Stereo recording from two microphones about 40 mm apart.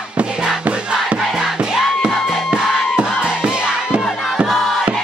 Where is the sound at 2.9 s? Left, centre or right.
Centre.